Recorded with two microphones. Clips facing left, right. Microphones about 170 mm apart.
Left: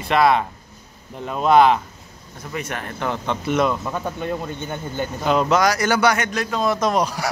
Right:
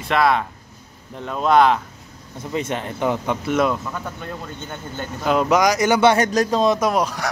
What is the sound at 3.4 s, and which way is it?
Speech, centre (ahead or behind).